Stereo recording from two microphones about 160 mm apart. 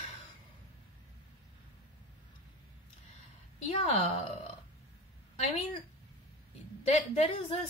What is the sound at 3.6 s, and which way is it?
Speech, 45° left (ahead or behind).